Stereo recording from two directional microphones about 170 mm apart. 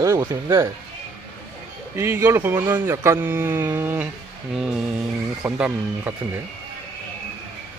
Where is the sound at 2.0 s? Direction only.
15° right (ahead or behind).